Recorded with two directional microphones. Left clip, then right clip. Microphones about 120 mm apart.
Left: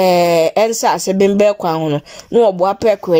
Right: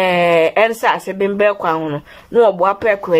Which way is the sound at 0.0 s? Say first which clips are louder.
Left 1 dB; 40° left (ahead or behind).